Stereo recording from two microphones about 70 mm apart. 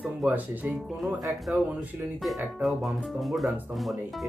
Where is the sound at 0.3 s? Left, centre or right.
Right.